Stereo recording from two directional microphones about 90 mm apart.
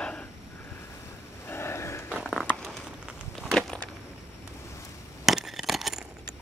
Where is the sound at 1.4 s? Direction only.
25° left (ahead or behind).